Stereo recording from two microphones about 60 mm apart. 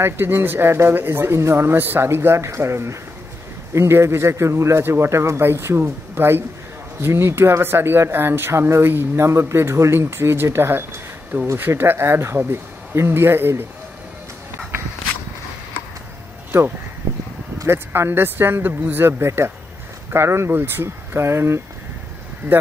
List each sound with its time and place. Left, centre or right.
0.0 s speech: right
17.6 s speech: right
19.0 s speech: right